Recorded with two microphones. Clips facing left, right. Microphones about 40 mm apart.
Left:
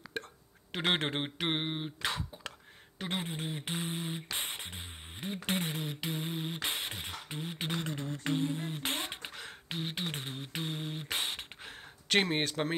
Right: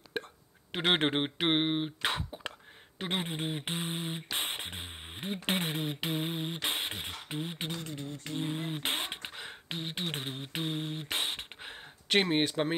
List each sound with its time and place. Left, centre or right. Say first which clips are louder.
0.2 s a sound: right 3 dB; right
0.7 s speech: right 3 dB; centre
4.4 s music: right 3 dB; right
5.1 s speech: right 2 dB; right
6.4 s speech: right 2 dB; centre
7.8 s beatboxing: left 2 dB; left
8.5 s beatboxing: right 1 dB; right
9.7 s speech: even; centre
10.0 s speech: right 2 dB; right
10.9 s beatboxing: right 2 dB; centre
11.6 s a sound: right 2 dB; right
12.2 s speech: right 3 dB; centre